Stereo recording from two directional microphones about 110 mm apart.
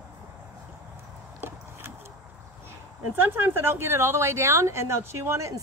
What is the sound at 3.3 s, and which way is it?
A woman's voice, 20° right (ahead or behind).